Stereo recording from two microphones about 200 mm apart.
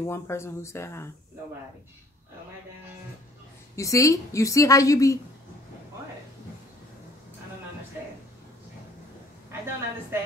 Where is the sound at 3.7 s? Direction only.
15° left (ahead or behind).